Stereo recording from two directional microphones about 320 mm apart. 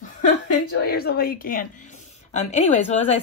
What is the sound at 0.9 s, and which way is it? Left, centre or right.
Speech, left.